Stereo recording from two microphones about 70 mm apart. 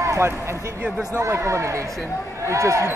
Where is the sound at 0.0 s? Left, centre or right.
Right.